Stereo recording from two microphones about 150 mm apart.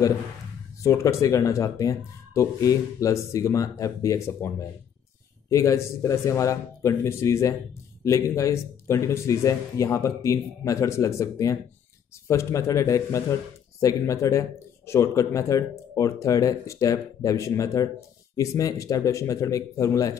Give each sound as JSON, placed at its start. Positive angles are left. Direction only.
{"t": 0.8, "sound": "speech", "side_deg": 20}